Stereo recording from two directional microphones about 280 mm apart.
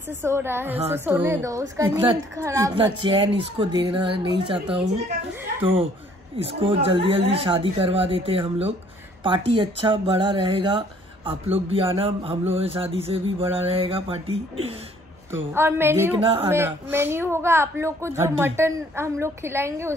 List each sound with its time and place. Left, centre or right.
0.2 s a woman's voice: centre
6.3 s a woman's voice: centre
15.3 s a woman's voice: centre
16.2 s speech: centre
16.4 s a woman's voice: centre